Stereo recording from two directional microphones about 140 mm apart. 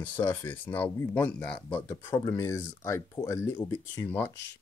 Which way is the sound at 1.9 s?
25° left (ahead or behind).